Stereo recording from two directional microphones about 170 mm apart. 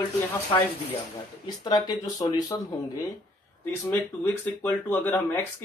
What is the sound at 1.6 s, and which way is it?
Speech, 25° left (ahead or behind).